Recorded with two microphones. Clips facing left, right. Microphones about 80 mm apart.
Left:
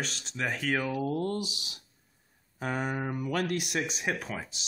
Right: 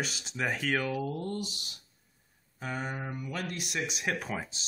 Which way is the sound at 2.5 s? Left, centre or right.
Left.